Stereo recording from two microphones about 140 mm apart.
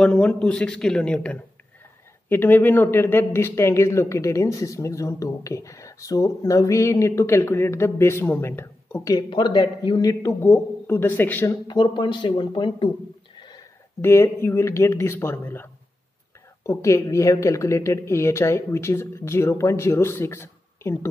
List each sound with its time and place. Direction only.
0.0 s a man's voice: 10° left (ahead or behind)
9.1 s speech: 35° left (ahead or behind); by 11.5 s 15° left (ahead or behind)
11.6 s speech: 30° left (ahead or behind)
13.4 s a sound: 30° left (ahead or behind)
14.0 s a man's voice: 20° left (ahead or behind)